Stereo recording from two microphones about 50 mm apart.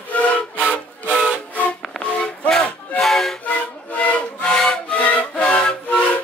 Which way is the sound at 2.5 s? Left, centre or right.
Left.